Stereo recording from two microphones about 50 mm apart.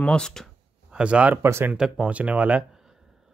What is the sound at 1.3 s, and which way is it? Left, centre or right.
Speech, right.